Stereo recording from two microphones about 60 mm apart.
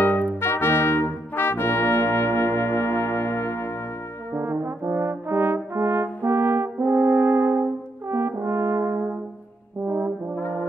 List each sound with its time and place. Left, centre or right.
0.4 s brass instrument: left
4.3 s brass instrument: right